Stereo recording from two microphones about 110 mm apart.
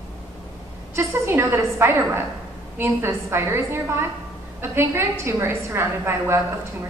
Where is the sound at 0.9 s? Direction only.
25° right (ahead or behind).